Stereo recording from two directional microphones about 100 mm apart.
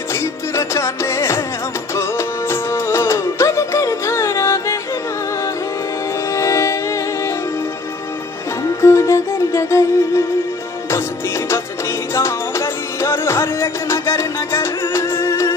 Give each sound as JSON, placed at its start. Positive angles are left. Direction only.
{"t": 0.1, "sound": "music", "side_deg": 30}
{"t": 6.3, "sound": "music", "side_deg": 30}
{"t": 8.8, "sound": "music", "side_deg": 30}